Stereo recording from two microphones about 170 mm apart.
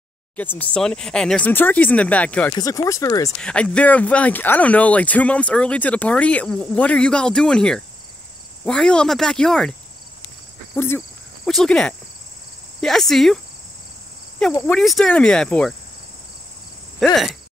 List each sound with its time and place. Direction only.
0.4 s speech: 10° left (ahead or behind)
2.5 s speech: 20° left (ahead or behind)
3.3 s speech: 5° left (ahead or behind)
10.7 s speech: 15° left (ahead or behind)
11.4 s speech: 5° left (ahead or behind)
14.7 s speech: centre (ahead or behind)
17.0 s speech: centre (ahead or behind)